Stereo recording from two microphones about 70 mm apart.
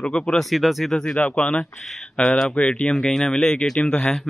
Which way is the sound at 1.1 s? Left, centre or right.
Centre.